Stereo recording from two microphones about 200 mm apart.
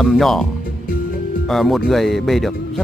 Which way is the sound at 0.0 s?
Centre (ahead or behind).